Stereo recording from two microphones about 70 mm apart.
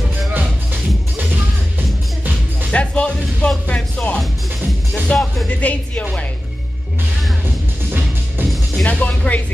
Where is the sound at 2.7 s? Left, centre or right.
Centre.